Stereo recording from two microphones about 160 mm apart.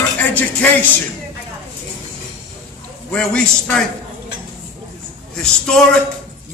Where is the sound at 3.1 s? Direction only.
5° left (ahead or behind).